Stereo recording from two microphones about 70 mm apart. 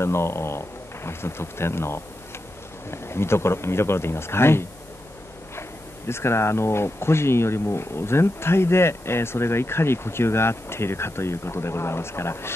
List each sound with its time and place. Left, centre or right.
0.0 s speech: left